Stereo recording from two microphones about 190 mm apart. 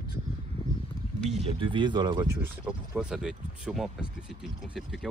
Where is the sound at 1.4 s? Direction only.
25° right (ahead or behind).